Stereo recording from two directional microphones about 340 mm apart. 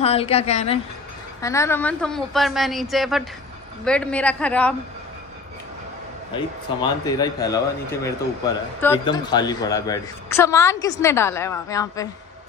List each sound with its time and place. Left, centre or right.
0.0 s a woman's voice: centre
6.3 s speech: centre